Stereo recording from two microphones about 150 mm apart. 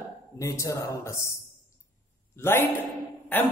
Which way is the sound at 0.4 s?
20° left (ahead or behind).